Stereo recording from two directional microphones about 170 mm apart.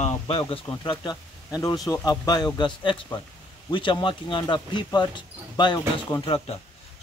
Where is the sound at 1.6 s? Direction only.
20° left (ahead or behind).